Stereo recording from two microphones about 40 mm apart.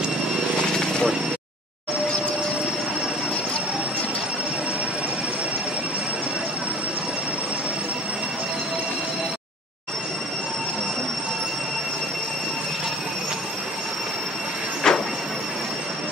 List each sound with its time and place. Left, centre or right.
14.8 s train: centre